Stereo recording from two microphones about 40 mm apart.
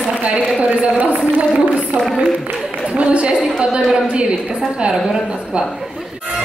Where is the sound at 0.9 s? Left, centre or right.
Right.